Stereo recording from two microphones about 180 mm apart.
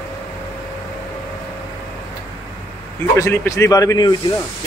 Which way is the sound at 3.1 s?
15° left (ahead or behind).